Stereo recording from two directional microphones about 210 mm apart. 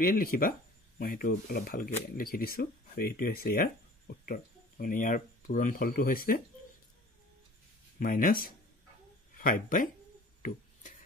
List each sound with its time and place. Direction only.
0.1 s speech: 45° left (ahead or behind)
8.0 s speech: 40° left (ahead or behind)
10.4 s a sound: 40° left (ahead or behind)